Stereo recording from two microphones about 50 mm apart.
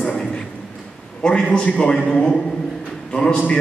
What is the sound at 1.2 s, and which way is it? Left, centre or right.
A man's voice, centre.